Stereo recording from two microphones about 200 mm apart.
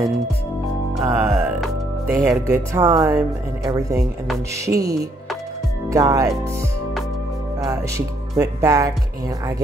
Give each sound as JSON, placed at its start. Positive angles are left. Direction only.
{"t": 1.0, "sound": "speech", "side_deg": -15}
{"t": 8.4, "sound": "speech", "side_deg": -15}